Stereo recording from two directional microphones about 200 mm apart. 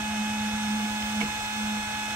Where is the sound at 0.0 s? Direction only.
5° right (ahead or behind).